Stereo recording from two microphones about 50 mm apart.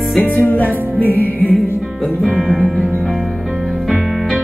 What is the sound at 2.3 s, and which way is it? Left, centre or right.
Music, centre.